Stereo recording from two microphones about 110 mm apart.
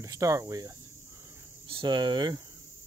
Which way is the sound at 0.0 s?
30° right (ahead or behind).